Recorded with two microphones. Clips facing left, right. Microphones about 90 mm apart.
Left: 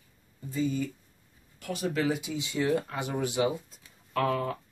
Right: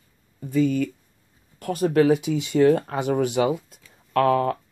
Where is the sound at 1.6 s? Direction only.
50° right (ahead or behind).